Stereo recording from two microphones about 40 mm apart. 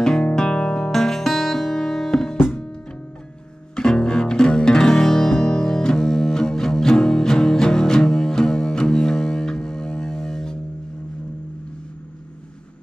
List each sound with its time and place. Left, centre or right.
0.0 s music: centre
0.9 s music: centre
3.7 s music: centre